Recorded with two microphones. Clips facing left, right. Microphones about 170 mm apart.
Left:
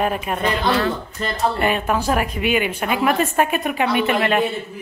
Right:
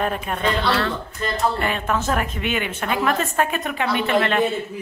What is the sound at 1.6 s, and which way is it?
Speech, 15° left (ahead or behind).